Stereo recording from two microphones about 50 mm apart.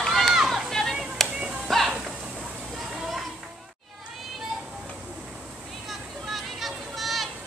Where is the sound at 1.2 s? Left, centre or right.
Centre.